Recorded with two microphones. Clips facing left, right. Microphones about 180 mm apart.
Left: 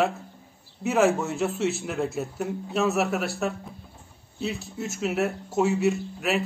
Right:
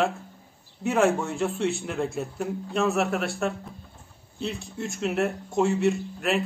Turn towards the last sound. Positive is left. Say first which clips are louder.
# even
turn(degrees=0)  # may be behind; listen again after turning